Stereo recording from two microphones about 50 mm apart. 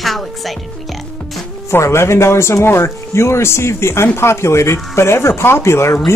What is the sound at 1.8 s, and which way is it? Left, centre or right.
Speech, left.